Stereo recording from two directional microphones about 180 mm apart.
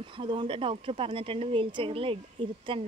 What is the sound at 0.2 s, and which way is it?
Speech, 30° right (ahead or behind).